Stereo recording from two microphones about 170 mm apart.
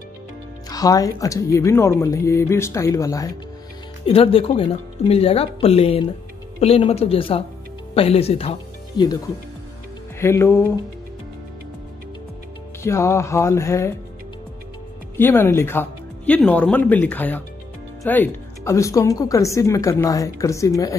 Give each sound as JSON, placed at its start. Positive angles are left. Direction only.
{"t": 0.7, "sound": "a woman's voice", "side_deg": 20}
{"t": 4.0, "sound": "speech", "side_deg": 35}
{"t": 10.2, "sound": "speech", "side_deg": 15}
{"t": 12.8, "sound": "speech", "side_deg": 15}
{"t": 15.1, "sound": "a woman's voice", "side_deg": 15}